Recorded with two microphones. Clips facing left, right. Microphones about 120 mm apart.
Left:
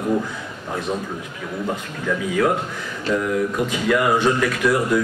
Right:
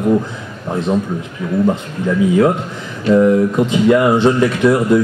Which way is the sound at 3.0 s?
25° right (ahead or behind).